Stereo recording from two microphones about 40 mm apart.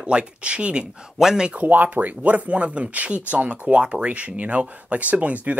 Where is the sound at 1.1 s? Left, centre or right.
Centre.